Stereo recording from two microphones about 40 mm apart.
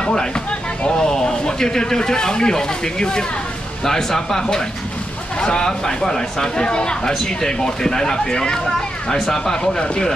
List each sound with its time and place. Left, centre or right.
0.0 s a man's voice: centre